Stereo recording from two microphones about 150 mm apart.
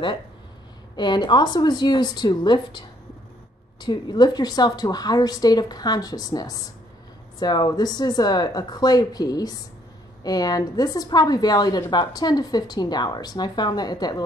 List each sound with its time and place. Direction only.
0.9 s a woman's voice: 30° left (ahead or behind)
3.8 s a woman's voice: 30° left (ahead or behind)